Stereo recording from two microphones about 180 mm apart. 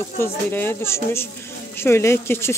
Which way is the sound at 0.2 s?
10° left (ahead or behind).